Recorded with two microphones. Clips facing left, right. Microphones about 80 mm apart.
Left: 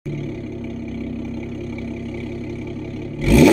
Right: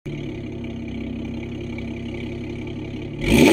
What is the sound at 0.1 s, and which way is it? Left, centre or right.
Vehicle, left.